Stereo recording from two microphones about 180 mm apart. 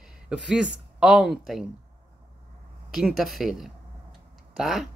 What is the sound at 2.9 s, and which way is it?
Speech, centre (ahead or behind).